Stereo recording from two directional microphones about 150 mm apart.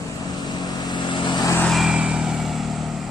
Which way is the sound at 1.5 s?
Centre (ahead or behind).